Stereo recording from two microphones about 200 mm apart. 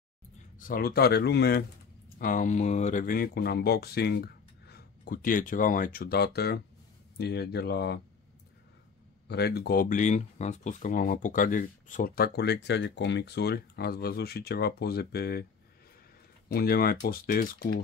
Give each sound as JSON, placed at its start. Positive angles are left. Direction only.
{"t": 0.6, "sound": "speech", "side_deg": 45}
{"t": 2.1, "sound": "speech", "side_deg": 45}
{"t": 9.3, "sound": "speech", "side_deg": 55}
{"t": 16.4, "sound": "speech", "side_deg": 50}